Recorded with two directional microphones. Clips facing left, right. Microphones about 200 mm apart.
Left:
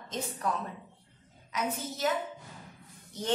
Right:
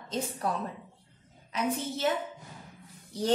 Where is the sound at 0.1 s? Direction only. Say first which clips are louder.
Right 2 dB; 35° right (ahead or behind).